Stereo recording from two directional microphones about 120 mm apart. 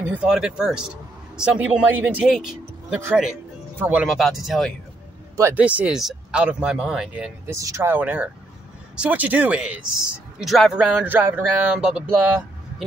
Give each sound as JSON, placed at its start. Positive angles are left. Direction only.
{"t": 0.1, "sound": "a man's voice", "side_deg": -10}
{"t": 2.3, "sound": "a sound", "side_deg": -5}
{"t": 3.7, "sound": "speech", "side_deg": -15}
{"t": 4.0, "sound": "speech", "side_deg": 0}
{"t": 5.3, "sound": "speech", "side_deg": -25}
{"t": 5.6, "sound": "a man's voice", "side_deg": -10}
{"t": 7.5, "sound": "a man's voice", "side_deg": -25}